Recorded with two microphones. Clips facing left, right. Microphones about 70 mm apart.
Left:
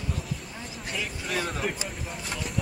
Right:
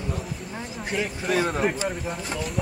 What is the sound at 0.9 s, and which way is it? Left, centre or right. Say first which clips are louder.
Speech: right 7 dB; right.